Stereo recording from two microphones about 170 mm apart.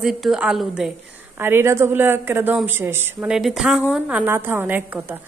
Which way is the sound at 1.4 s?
15° right (ahead or behind).